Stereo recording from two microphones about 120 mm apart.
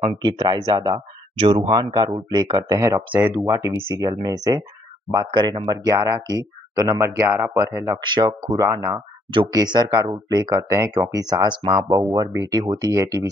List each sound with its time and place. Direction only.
0.2 s speech: 35° right (ahead or behind)
1.3 s speech: 50° right (ahead or behind)
1.7 s speech: 40° right (ahead or behind)
3.1 s speech: 15° right (ahead or behind)
8.0 s speech: 40° right (ahead or behind)
8.6 s speech: 25° right (ahead or behind)